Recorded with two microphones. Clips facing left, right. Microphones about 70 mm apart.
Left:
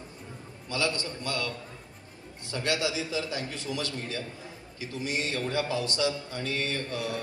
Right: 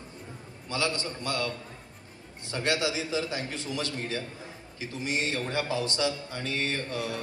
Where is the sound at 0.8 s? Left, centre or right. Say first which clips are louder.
Even; right.